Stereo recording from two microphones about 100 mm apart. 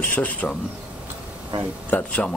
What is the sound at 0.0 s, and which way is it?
Speech, 15° left (ahead or behind).